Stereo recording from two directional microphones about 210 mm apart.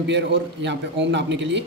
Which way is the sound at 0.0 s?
55° right (ahead or behind).